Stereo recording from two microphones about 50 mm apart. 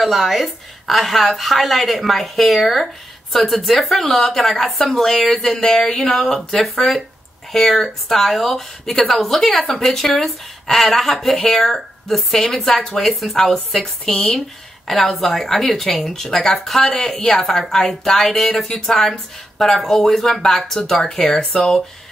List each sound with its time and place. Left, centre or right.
0.0 s a woman's voice: centre